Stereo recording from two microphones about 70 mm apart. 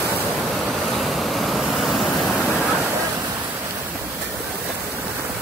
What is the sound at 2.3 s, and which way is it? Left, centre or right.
Waterfall, right.